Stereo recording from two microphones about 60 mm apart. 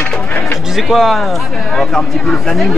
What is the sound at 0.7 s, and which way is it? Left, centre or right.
Speech, centre.